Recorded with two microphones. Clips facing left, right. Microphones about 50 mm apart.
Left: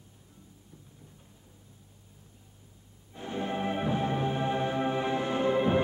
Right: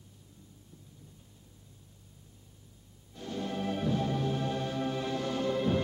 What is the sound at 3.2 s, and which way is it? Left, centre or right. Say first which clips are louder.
Music: left 3 dB; left.